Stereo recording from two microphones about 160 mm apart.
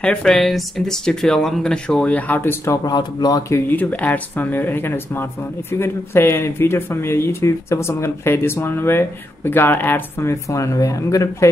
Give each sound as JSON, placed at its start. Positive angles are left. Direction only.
{"t": 0.0, "sound": "speech", "side_deg": 5}